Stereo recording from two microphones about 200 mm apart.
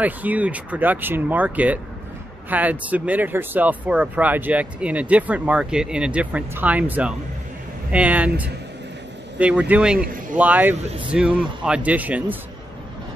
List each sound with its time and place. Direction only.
0.0 s speech: 10° right (ahead or behind)
9.4 s speech: 5° right (ahead or behind)